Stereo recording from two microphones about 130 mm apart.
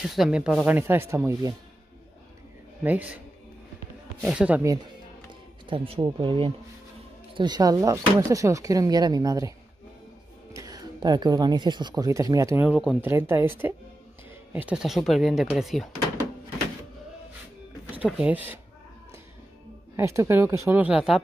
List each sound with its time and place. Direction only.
0.0 s speech: centre (ahead or behind)
0.7 s speech: 15° right (ahead or behind)
2.8 s speech: 10° right (ahead or behind)
4.2 s speech: centre (ahead or behind)
5.7 s speech: 40° right (ahead or behind); by 9.5 s 25° right (ahead or behind)
10.5 s speech: 25° right (ahead or behind)
12.6 s speech: 5° right (ahead or behind)
13.0 s speech: 20° right (ahead or behind); by 15.9 s centre (ahead or behind)
18.0 s speech: 10° right (ahead or behind)
20.0 s speech: 20° right (ahead or behind)
20.8 s speech: 5° right (ahead or behind)